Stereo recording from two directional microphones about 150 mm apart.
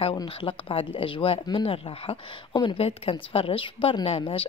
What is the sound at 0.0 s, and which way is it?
Speech, 35° left (ahead or behind).